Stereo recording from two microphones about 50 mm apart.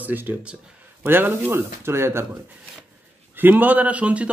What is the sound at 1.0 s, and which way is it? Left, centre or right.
Speech, right.